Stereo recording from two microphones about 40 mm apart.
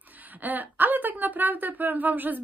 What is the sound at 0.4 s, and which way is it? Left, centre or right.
A woman's voice, right.